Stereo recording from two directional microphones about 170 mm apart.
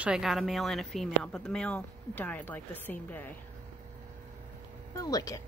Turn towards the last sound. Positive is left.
turn(degrees=20)  # may be behind; listen again after turning